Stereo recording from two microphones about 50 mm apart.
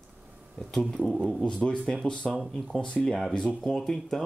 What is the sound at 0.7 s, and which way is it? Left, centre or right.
Speech, centre.